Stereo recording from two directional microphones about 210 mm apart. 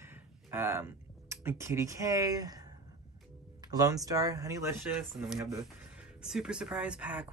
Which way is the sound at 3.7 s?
15° right (ahead or behind).